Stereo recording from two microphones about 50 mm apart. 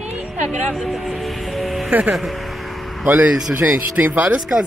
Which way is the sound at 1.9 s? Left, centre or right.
Right.